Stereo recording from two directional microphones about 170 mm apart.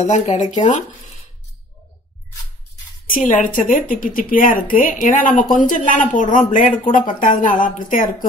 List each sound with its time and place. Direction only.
0.0 s speech: 45° left (ahead or behind)
3.1 s speech: 50° left (ahead or behind)